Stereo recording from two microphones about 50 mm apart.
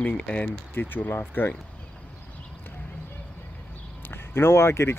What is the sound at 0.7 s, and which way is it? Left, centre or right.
Speech, left.